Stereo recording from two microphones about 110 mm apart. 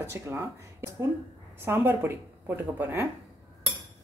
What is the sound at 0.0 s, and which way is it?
Speech, 25° right (ahead or behind).